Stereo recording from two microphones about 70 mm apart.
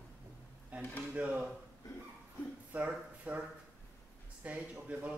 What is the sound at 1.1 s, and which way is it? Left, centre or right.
Speech, centre.